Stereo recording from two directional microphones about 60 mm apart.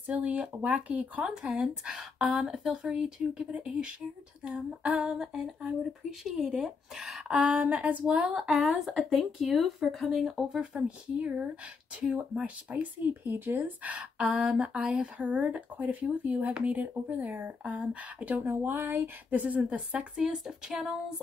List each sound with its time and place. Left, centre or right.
0.1 s speech: right
8.4 s speech: centre
10.7 s speech: right
13.3 s speech: right
14.1 s a sound: centre
14.6 s speech: centre
18.5 s speech: right
19.4 s speech: right; by 20.9 s centre